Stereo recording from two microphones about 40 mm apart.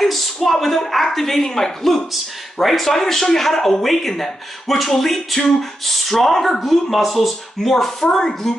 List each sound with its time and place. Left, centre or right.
0.0 s a woman's voice: centre